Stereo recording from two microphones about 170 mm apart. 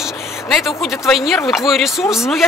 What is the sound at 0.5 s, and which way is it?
Speech, centre (ahead or behind).